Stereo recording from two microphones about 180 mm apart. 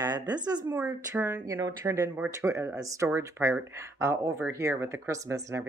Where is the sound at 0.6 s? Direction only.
10° right (ahead or behind).